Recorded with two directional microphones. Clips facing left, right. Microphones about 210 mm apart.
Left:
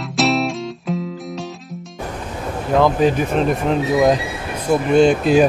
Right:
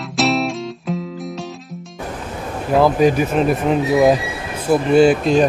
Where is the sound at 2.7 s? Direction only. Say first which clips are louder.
Right 2 dB; 10° right (ahead or behind).